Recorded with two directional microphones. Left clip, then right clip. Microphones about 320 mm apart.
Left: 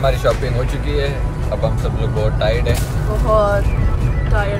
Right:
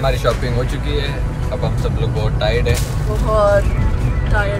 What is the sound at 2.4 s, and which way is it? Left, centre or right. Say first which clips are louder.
Speech: right 2 dB; centre.